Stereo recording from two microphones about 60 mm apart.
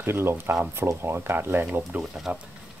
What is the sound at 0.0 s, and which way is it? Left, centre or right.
Speech, right.